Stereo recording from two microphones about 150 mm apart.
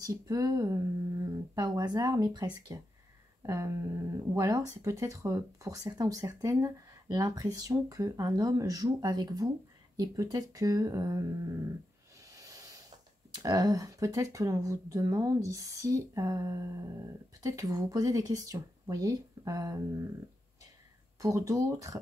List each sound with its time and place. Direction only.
0.0 s speech: 25° right (ahead or behind)
12.3 s a sound: 25° right (ahead or behind)
13.3 s speech: 25° right (ahead or behind)
21.2 s speech: 20° right (ahead or behind)